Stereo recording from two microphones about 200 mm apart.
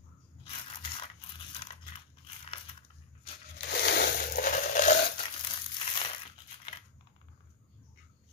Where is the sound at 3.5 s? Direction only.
55° left (ahead or behind).